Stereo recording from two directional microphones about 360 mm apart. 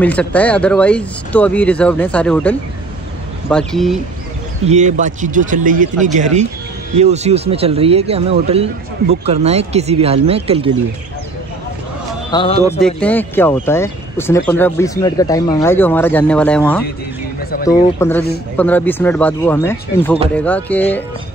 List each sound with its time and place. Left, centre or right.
0.0 s speech: centre
4.6 s speech: centre
12.3 s speech: centre